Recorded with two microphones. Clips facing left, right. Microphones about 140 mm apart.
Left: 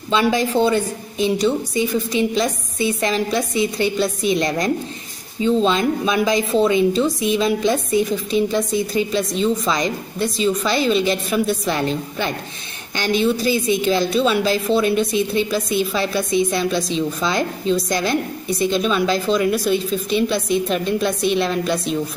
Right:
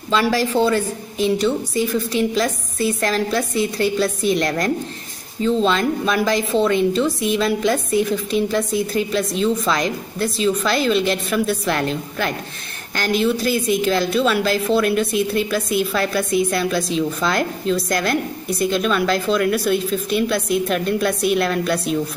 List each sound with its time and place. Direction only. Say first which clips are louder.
0.1 s a woman's voice: even; centre (ahead or behind)